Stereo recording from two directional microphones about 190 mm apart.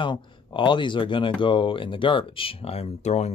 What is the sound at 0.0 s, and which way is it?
Speech, 25° left (ahead or behind).